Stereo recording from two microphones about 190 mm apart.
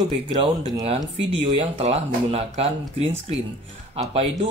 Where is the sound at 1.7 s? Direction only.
35° right (ahead or behind).